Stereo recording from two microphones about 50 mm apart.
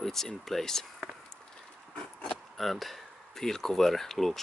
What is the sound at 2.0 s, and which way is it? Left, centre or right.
Oink, centre.